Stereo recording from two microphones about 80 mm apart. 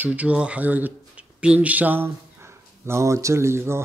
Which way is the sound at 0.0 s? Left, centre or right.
Centre.